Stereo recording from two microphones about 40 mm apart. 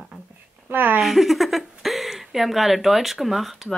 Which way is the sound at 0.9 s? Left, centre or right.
Centre.